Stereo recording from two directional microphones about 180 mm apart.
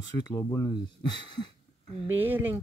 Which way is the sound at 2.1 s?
10° right (ahead or behind).